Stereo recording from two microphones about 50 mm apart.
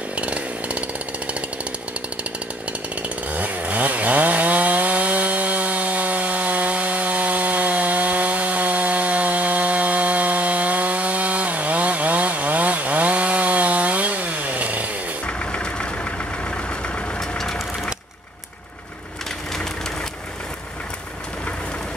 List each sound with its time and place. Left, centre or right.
0.1 s chainsaw: right
3.0 s chainsaw: right
15.2 s vehicle: left